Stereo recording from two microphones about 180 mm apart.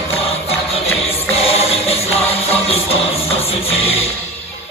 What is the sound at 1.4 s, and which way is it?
Music, 35° left (ahead or behind).